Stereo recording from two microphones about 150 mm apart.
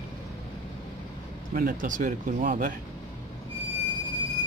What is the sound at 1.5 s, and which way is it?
Speech, 75° right (ahead or behind).